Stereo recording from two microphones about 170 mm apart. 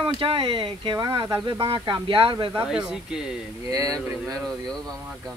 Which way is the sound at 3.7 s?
20° right (ahead or behind).